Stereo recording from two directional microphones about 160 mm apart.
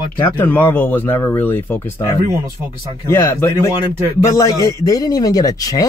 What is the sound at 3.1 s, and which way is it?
A man's voice, 20° left (ahead or behind).